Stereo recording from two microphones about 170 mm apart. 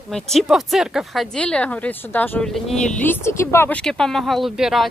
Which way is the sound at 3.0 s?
15° left (ahead or behind).